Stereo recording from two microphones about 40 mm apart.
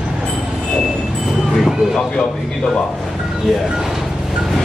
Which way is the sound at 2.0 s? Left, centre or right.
Centre.